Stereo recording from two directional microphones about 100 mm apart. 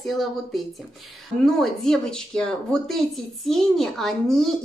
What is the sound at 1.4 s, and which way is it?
Speech, 5° left (ahead or behind).